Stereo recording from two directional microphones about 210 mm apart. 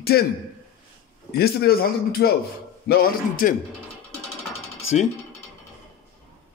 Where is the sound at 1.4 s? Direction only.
45° left (ahead or behind).